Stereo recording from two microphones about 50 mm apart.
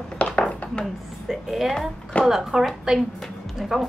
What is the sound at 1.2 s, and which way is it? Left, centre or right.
A woman's voice, centre.